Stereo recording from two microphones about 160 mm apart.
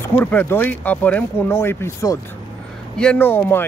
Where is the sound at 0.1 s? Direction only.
10° left (ahead or behind).